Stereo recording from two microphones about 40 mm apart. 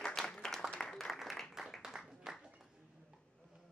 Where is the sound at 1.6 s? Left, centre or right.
Centre.